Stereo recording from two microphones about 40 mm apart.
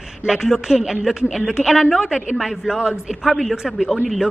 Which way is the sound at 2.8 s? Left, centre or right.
Right.